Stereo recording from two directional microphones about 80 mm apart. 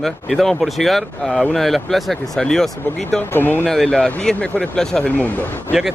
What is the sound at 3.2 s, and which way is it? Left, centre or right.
Speech, left.